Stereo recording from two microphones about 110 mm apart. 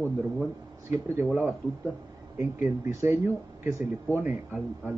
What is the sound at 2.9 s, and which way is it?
Speech, 25° right (ahead or behind).